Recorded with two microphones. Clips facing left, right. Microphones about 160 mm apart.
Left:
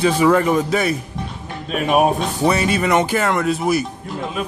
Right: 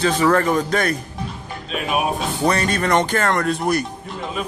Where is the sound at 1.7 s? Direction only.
45° left (ahead or behind).